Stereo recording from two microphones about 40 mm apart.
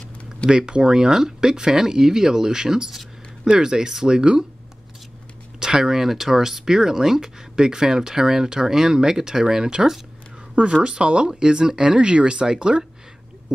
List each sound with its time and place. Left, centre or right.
0.5 s speech: centre
5.6 s speech: centre
10.5 s speech: right